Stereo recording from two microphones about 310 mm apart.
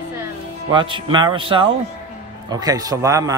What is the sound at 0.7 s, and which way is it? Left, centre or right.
A man's voice, centre.